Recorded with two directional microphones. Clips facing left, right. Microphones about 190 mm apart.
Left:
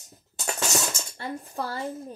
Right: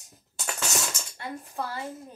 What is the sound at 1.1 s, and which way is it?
Speech, 35° left (ahead or behind).